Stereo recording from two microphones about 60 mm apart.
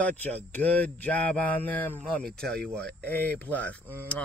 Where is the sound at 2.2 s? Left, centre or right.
Centre.